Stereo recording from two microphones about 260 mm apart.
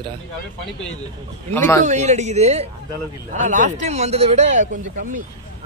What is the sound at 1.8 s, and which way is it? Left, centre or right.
Speech, right.